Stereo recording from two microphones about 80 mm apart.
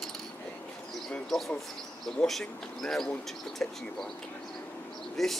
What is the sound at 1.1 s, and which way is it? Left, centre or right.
Speech, centre.